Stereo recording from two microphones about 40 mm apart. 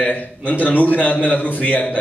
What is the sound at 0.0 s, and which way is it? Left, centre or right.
A man's voice, left.